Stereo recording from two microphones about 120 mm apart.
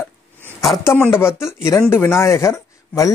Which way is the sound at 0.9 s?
20° left (ahead or behind).